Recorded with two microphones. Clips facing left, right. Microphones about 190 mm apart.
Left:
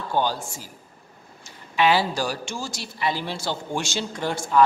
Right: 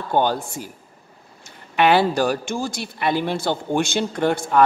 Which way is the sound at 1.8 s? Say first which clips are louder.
Right 4 dB; 60° right (ahead or behind).